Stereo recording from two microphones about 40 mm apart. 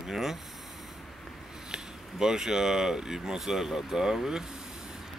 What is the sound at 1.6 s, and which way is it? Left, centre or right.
Speech, centre.